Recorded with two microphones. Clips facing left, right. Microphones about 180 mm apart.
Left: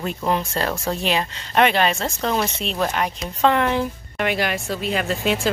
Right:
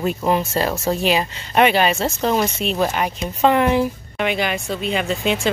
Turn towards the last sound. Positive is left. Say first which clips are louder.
# right 1 dB
turn(degrees=0)  # may be behind; listen again after turning